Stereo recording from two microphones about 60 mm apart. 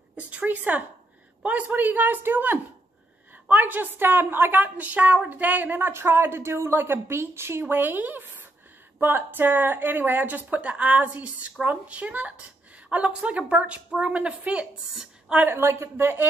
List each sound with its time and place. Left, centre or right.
0.1 s a man's voice: right
7.6 s a woman's voice: right
15.5 s a woman's voice: right